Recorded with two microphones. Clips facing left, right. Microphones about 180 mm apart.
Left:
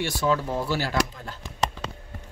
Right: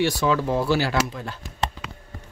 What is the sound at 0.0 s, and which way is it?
Speech, 75° right (ahead or behind).